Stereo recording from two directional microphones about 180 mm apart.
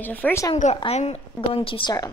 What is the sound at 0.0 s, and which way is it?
Speech, 10° left (ahead or behind).